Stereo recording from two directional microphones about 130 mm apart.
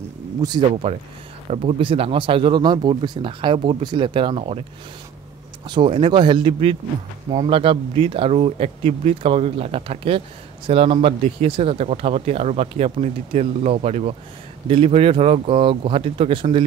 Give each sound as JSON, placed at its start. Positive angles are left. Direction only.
{"t": 0.4, "sound": "speech", "side_deg": -35}
{"t": 1.5, "sound": "speech", "side_deg": -55}
{"t": 5.7, "sound": "speech", "side_deg": -35}